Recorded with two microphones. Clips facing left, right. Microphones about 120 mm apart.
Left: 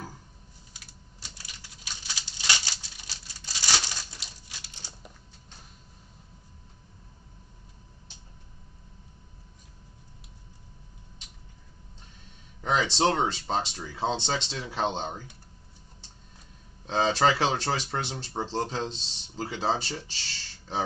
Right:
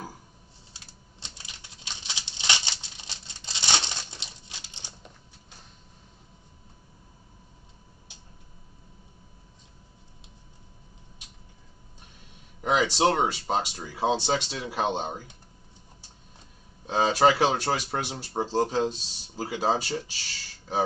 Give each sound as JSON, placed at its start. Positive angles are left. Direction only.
{"t": 1.2, "sound": "patter", "side_deg": -25}
{"t": 12.6, "sound": "speech", "side_deg": -10}
{"t": 16.8, "sound": "speech", "side_deg": -10}